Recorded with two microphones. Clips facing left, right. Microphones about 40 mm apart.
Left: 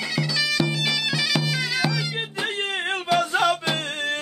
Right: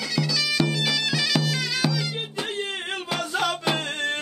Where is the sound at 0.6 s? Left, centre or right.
Centre.